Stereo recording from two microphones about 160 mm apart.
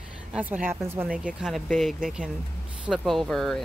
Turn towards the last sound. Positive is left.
turn(degrees=0)  # may be behind; listen again after turning